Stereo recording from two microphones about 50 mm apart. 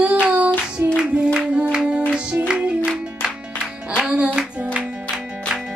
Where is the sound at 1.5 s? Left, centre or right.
Right.